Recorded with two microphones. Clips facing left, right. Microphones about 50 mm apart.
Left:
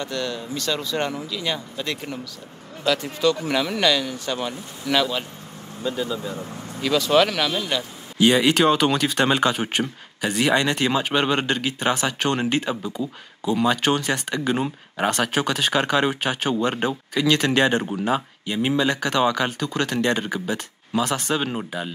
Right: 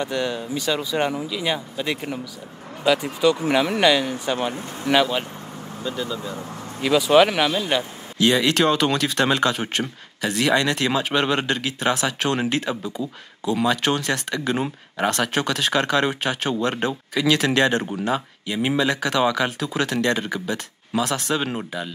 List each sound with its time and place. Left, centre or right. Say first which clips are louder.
0.0 s speech: right 3 dB; centre
5.8 s speech: left 2 dB; centre
6.3 s speech: even; centre
8.2 s speech: left 1 dB; centre